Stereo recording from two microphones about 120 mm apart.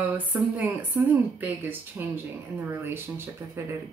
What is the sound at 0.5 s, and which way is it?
Speech, 15° right (ahead or behind).